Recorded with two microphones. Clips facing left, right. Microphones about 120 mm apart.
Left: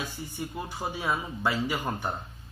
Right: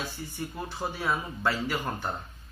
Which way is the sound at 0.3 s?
15° left (ahead or behind).